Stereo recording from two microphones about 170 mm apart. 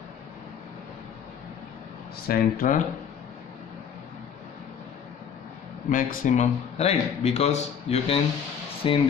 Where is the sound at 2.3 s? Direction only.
50° left (ahead or behind).